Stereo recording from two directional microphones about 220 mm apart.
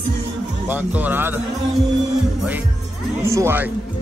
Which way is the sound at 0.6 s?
10° right (ahead or behind).